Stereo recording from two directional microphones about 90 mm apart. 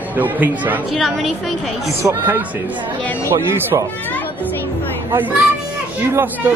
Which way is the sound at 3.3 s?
30° right (ahead or behind).